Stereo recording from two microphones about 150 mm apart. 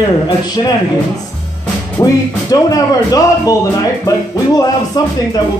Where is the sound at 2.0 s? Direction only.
25° left (ahead or behind).